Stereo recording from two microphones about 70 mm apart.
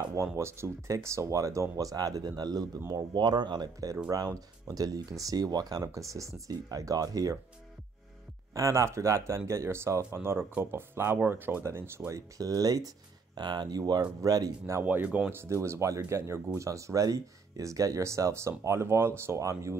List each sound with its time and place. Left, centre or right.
0.1 s speech: right
3.2 s speech: right
4.1 s speech: right
8.5 s speech: right
10.1 s speech: right
12.1 s speech: right
14.8 s speech: right
15.2 s speech: right